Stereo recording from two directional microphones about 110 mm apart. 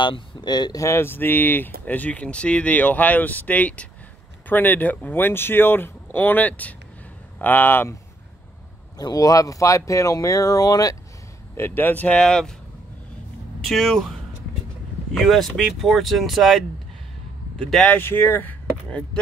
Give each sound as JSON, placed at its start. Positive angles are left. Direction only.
{"t": 0.0, "sound": "speech", "side_deg": 45}
{"t": 0.8, "sound": "speech", "side_deg": 20}
{"t": 8.9, "sound": "speech", "side_deg": 35}
{"t": 11.5, "sound": "speech", "side_deg": 20}
{"t": 13.7, "sound": "speech", "side_deg": 0}
{"t": 15.1, "sound": "speech", "side_deg": 0}
{"t": 17.8, "sound": "speech", "side_deg": 20}